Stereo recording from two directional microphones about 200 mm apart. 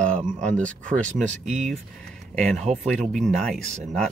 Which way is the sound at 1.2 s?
35° right (ahead or behind).